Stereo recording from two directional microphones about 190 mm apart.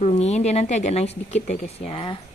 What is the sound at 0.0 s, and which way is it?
Speech, 35° left (ahead or behind).